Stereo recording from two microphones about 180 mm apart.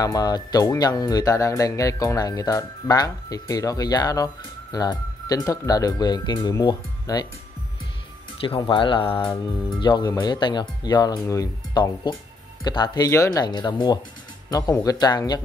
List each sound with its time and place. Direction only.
0.0 s speech: 20° left (ahead or behind)
8.4 s speech: 30° left (ahead or behind)